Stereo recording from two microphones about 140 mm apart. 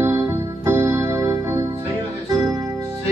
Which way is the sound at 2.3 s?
30° right (ahead or behind).